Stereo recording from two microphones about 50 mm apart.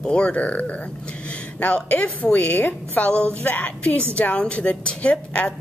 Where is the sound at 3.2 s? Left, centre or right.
Left.